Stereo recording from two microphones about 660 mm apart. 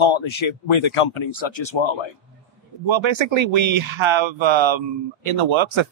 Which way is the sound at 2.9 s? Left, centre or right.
Right.